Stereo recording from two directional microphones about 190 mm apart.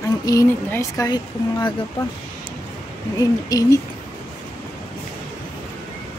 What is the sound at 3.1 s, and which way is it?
Speech, 20° left (ahead or behind).